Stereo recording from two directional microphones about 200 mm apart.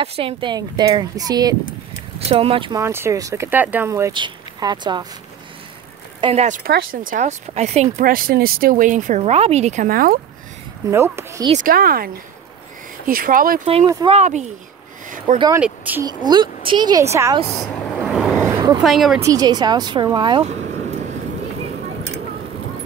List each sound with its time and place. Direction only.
0.0 s speech: 30° right (ahead or behind)
2.1 s speech: 30° right (ahead or behind)
2.8 s speech: 15° right (ahead or behind)
6.2 s speech: 35° right (ahead or behind)
10.9 s speech: 15° right (ahead or behind)
11.6 s speech: 45° right (ahead or behind)
14.0 s speech: 35° right (ahead or behind)
15.3 s speech: 20° right (ahead or behind)
15.6 s speech: 10° right (ahead or behind)
16.1 s speech: 20° right (ahead or behind)
17.6 s vehicle: centre (ahead or behind)
18.5 s a sound: 20° right (ahead or behind)
18.8 s speech: centre (ahead or behind)
19.1 s speech: 15° right (ahead or behind)